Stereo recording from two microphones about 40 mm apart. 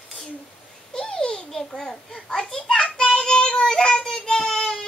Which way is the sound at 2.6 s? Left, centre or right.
Left.